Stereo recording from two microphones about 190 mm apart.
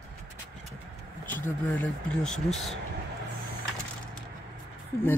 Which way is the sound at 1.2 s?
10° left (ahead or behind).